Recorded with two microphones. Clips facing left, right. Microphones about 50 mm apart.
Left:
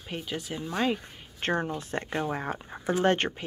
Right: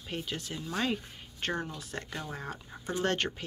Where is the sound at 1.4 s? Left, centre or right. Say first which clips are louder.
Left 6 dB; left.